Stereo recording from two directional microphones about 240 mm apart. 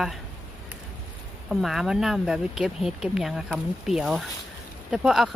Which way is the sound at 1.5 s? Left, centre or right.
Centre.